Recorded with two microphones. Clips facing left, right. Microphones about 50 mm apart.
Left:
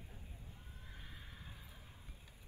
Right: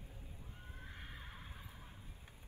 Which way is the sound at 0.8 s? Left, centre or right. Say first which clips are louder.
Right 4 dB; right.